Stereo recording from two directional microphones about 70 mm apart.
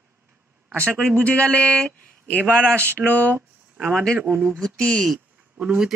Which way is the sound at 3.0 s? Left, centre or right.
Centre.